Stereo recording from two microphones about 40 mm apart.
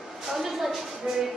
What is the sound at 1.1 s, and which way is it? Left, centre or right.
Music, centre.